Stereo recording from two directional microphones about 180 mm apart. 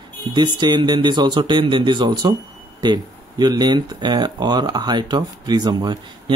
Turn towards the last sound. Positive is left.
turn(degrees=-25)  # may be behind; listen again after turning